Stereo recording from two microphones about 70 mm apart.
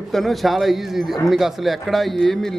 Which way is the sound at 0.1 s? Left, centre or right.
Centre.